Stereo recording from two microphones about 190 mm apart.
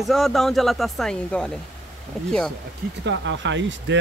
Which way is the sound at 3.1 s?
75° right (ahead or behind).